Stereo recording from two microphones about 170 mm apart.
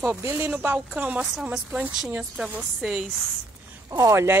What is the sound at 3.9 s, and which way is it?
Speech, 20° right (ahead or behind).